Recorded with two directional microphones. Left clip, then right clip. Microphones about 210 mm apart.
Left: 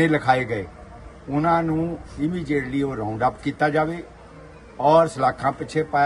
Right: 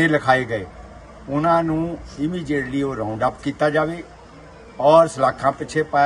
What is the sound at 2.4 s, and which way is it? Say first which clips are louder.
Speech: right 1 dB; 25° left (ahead or behind).